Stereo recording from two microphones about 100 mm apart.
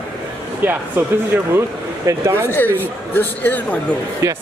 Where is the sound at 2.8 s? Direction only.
20° left (ahead or behind).